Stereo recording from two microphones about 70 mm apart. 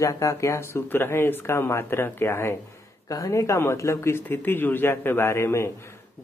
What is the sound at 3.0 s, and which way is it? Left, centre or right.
Speech, left.